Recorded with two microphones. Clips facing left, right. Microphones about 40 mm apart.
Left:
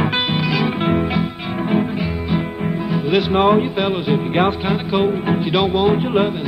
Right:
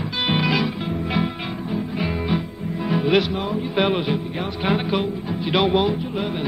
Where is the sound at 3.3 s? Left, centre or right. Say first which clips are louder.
Left 11 dB; left.